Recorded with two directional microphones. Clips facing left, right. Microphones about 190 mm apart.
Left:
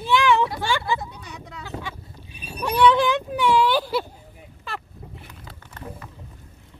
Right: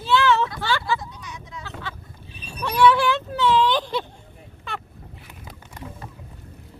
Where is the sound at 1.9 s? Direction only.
15° left (ahead or behind).